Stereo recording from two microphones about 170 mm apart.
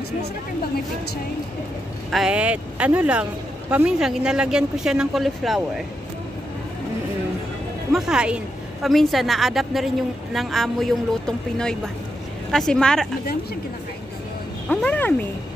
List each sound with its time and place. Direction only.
2.0 s speech: 5° right (ahead or behind)
7.9 s speech: 5° right (ahead or behind)
14.7 s speech: 10° left (ahead or behind)